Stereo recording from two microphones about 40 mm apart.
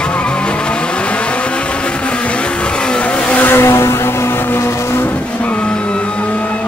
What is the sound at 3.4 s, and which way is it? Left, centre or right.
Vehicle, left.